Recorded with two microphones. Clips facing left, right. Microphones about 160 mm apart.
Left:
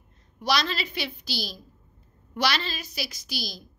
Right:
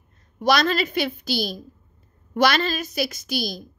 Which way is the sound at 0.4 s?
50° right (ahead or behind).